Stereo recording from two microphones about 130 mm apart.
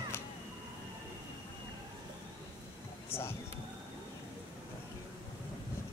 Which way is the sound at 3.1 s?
20° left (ahead or behind).